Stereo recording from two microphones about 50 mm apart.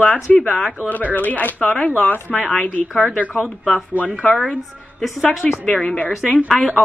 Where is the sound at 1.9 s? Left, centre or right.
Left.